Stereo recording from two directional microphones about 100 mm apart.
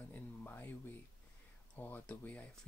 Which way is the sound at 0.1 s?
20° left (ahead or behind).